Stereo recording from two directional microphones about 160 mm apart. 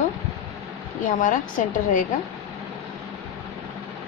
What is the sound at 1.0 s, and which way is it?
Speech, 55° left (ahead or behind).